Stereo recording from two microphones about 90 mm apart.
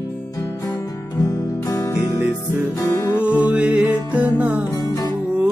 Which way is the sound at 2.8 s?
35° left (ahead or behind).